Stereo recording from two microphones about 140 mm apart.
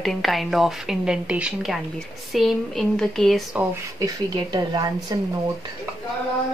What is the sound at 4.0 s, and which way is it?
Speech, 30° right (ahead or behind).